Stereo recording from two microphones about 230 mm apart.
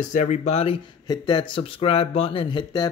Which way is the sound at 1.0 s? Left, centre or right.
Centre.